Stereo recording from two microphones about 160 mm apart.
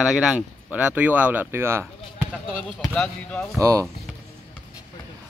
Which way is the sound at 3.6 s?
20° right (ahead or behind).